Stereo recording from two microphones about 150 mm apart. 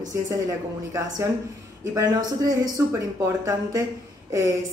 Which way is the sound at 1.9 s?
25° right (ahead or behind).